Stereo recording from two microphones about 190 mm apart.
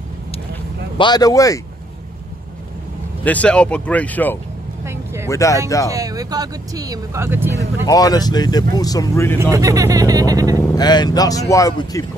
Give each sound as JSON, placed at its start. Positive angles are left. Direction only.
{"t": 0.9, "sound": "speech", "side_deg": 20}
{"t": 3.3, "sound": "speech", "side_deg": 5}
{"t": 4.8, "sound": "vehicle", "side_deg": -15}
{"t": 5.3, "sound": "speech", "side_deg": 15}
{"t": 5.9, "sound": "speech", "side_deg": -20}
{"t": 7.5, "sound": "speech", "side_deg": 20}
{"t": 9.4, "sound": "speech", "side_deg": -15}
{"t": 10.8, "sound": "speech", "side_deg": 20}